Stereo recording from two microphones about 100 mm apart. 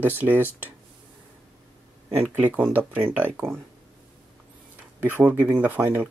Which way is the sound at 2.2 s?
20° right (ahead or behind).